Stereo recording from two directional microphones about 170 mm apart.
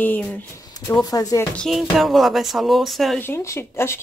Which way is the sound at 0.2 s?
10° left (ahead or behind).